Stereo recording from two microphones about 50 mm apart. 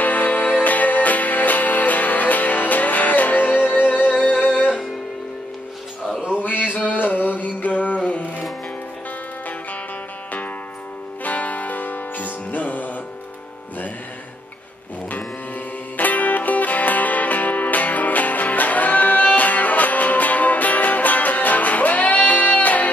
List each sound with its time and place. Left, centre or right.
0.0 s music: left
6.4 s a sound: left
11.2 s music: left
16.0 s music: left